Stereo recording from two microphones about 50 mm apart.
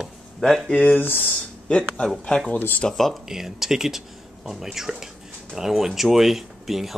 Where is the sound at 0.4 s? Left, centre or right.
Centre.